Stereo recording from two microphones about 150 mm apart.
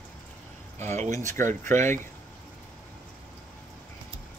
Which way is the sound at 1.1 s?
20° left (ahead or behind).